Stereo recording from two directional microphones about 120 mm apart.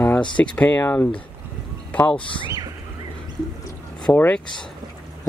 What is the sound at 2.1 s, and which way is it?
Speech, 45° left (ahead or behind).